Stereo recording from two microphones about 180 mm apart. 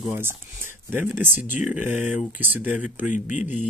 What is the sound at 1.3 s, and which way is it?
Speech, 45° left (ahead or behind).